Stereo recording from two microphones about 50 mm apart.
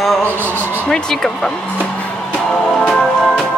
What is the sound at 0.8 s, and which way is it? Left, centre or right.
Speech, centre.